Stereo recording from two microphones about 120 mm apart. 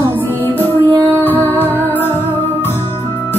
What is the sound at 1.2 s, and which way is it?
Music, 15° left (ahead or behind).